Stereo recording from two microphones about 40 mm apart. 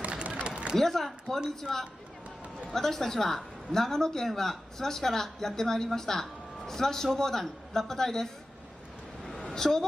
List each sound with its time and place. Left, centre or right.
0.0 s a sound: right
0.7 s speech: centre
9.4 s vehicle: centre